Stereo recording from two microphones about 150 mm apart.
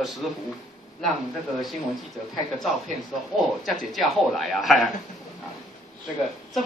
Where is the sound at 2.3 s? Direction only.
Centre (ahead or behind).